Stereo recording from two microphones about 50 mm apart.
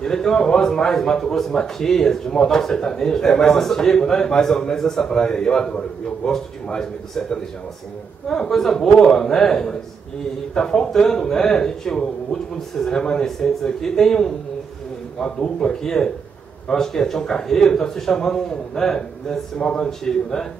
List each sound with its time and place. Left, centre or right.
0.0 s speech: centre